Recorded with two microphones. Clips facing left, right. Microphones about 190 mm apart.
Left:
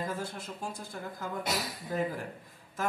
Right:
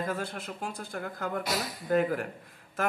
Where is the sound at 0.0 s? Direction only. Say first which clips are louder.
Right 3 dB; 65° right (ahead or behind).